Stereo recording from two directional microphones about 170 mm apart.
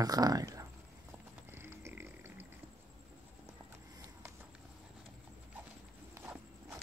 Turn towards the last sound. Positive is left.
turn(degrees=-15)  # may be behind; listen again after turning